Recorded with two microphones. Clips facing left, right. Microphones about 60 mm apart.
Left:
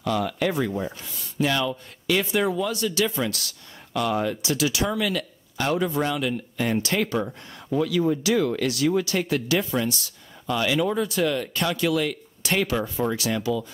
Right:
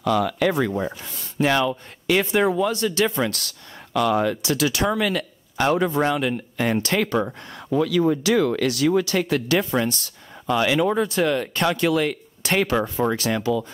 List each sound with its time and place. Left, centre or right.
0.0 s speech: right
1.0 s speech: right
3.9 s speech: right
4.4 s speech: right
7.2 s speech: right